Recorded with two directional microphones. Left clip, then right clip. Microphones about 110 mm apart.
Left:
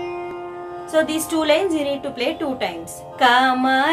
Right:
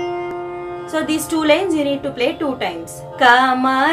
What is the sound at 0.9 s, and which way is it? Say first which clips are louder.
Child singing: left 1 dB; 20° left (ahead or behind).